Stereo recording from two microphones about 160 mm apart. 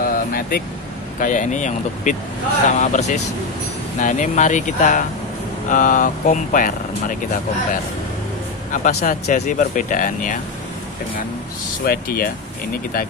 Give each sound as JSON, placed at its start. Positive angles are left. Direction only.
{"t": 0.0, "sound": "vehicle", "side_deg": 60}
{"t": 1.2, "sound": "speech", "side_deg": 50}
{"t": 8.7, "sound": "speech", "side_deg": 55}
{"t": 11.8, "sound": "speech", "side_deg": 70}